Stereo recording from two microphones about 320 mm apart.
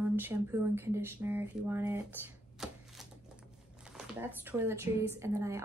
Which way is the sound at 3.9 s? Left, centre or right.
Centre.